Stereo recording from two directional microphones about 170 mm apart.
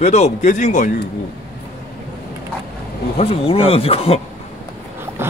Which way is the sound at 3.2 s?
35° left (ahead or behind).